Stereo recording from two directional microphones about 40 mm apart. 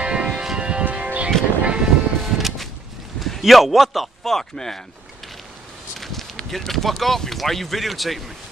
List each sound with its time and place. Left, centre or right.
0.0 s music: right
0.6 s music: right
0.8 s music: right
1.6 s a sound: right
2.2 s music: centre
3.2 s speech: centre
4.2 s a man's voice: centre
5.9 s a sound: centre
6.5 s speech: centre